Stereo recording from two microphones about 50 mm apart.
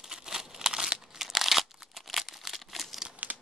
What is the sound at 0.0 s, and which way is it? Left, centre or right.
Crumpling, centre.